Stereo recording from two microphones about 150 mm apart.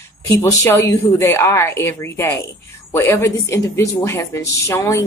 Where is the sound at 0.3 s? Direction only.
20° left (ahead or behind).